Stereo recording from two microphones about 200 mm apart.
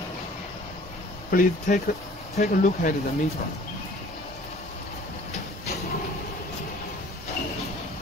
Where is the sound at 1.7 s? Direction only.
40° left (ahead or behind).